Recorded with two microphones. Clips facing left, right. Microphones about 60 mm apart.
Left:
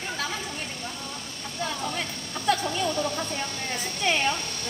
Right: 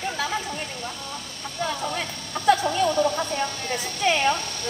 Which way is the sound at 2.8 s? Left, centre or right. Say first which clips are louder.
Right 5 dB; right.